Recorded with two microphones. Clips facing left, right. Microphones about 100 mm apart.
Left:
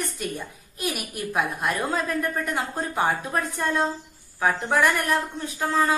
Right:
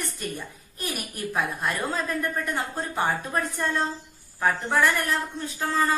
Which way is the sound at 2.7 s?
15° left (ahead or behind).